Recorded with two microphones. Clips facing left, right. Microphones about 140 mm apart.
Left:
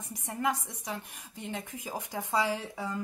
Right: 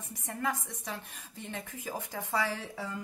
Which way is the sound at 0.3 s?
15° left (ahead or behind).